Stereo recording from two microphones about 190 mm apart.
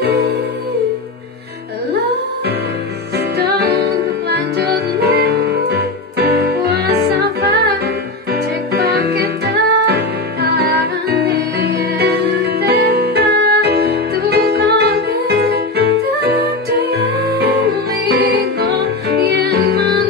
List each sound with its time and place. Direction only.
0.0 s music: 55° right (ahead or behind)
3.3 s music: 60° right (ahead or behind)